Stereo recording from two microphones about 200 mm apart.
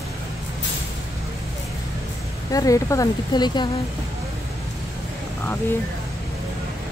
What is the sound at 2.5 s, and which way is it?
A woman's voice, 15° left (ahead or behind).